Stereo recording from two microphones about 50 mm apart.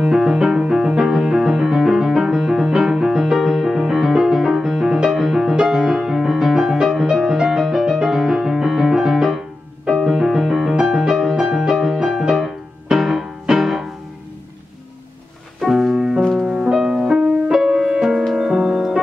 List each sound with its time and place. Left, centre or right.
0.0 s music: centre
15.6 s music: centre
16.3 s music: centre